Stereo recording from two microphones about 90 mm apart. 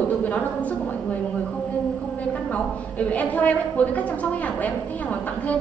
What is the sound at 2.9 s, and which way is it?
A woman's voice, 15° left (ahead or behind).